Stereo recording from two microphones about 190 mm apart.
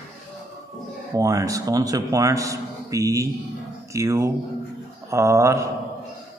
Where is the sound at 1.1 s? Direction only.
15° right (ahead or behind).